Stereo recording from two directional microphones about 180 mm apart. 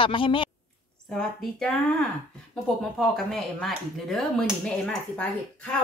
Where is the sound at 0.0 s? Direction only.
30° left (ahead or behind).